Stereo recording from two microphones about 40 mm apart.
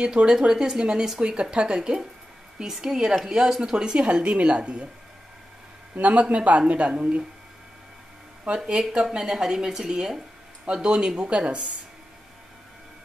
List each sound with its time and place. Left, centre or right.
0.0 s speech: right
2.6 s speech: centre
4.1 s speech: right
5.9 s speech: right
8.6 s speech: right